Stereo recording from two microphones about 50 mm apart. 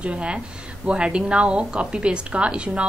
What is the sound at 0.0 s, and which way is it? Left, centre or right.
A woman's voice, right.